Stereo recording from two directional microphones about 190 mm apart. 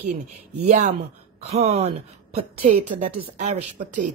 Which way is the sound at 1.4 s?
35° right (ahead or behind).